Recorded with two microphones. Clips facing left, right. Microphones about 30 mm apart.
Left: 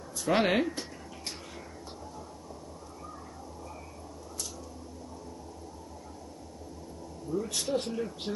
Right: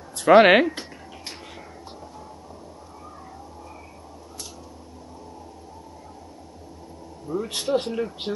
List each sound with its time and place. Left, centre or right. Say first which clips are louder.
0.3 s speech: right 13 dB; right
0.7 s a sound: right 6 dB; right
7.2 s speech: right 6 dB; right